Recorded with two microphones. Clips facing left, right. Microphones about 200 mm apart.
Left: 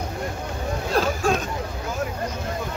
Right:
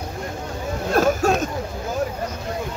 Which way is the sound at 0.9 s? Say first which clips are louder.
Right 4 dB; 45° right (ahead or behind).